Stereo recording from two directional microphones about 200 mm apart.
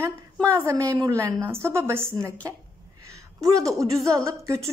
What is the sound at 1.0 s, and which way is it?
A woman's voice, 15° right (ahead or behind).